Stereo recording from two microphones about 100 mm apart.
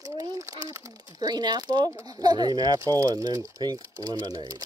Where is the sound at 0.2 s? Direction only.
35° right (ahead or behind).